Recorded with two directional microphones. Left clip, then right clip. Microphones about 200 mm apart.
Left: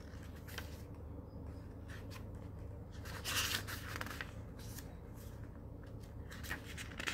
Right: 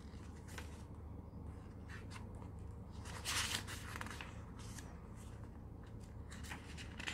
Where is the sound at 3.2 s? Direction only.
10° right (ahead or behind).